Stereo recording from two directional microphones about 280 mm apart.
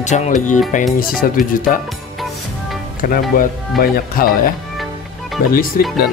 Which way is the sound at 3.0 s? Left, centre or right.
Left.